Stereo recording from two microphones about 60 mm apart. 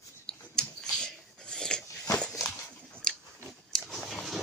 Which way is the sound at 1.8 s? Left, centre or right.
Left.